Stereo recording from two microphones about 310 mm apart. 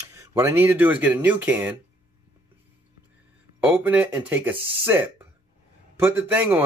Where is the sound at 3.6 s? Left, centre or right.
Centre.